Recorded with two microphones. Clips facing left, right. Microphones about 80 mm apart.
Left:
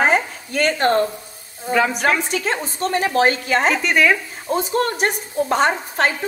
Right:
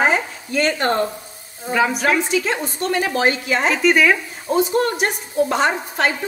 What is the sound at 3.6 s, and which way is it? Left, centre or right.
Speech, centre.